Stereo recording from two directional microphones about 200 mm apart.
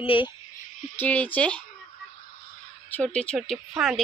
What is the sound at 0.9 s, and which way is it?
Speech, 10° left (ahead or behind).